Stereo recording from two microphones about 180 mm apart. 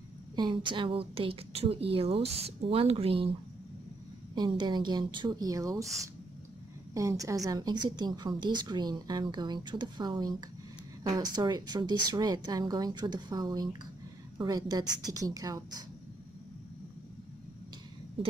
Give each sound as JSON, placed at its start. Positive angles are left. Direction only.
{"t": 0.4, "sound": "a woman's voice", "side_deg": -25}
{"t": 4.4, "sound": "a woman's voice", "side_deg": -25}
{"t": 6.9, "sound": "a woman's voice", "side_deg": -20}